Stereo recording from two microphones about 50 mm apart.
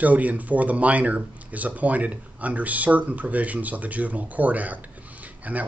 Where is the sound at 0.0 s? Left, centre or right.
Right.